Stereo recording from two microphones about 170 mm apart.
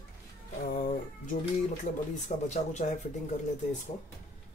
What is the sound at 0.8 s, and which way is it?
Speech, 50° left (ahead or behind).